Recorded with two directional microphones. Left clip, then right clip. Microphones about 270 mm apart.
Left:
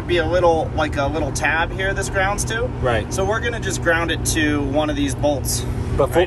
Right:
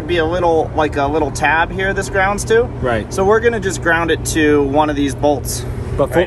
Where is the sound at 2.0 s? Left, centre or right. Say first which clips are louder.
Right 6 dB; centre.